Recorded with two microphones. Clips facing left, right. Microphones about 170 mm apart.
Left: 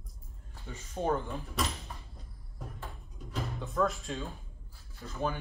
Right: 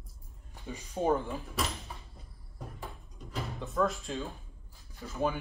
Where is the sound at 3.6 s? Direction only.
Centre (ahead or behind).